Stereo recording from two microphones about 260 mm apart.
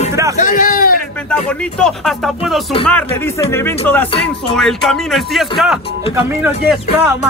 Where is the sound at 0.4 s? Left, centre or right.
Left.